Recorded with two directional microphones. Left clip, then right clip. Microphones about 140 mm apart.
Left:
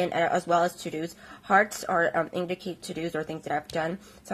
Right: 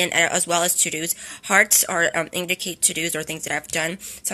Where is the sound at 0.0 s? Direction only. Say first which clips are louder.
Right 5 dB; 15° right (ahead or behind).